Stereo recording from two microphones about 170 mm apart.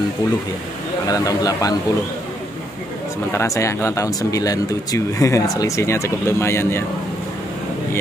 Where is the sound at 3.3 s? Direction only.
15° left (ahead or behind).